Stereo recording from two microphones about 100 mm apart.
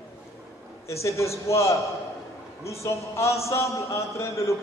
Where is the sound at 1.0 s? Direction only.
30° left (ahead or behind).